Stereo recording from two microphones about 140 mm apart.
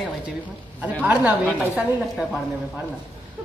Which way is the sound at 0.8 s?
10° right (ahead or behind).